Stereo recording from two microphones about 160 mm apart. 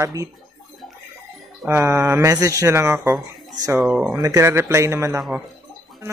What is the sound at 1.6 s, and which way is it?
Speech, 15° right (ahead or behind).